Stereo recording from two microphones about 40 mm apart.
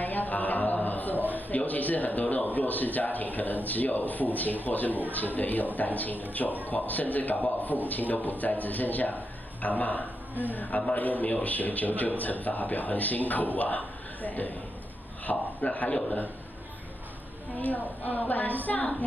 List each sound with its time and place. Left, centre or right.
0.0 s a sound: left
2.2 s a man's voice: left
17.6 s a man's voice: left
18.7 s a woman's voice: left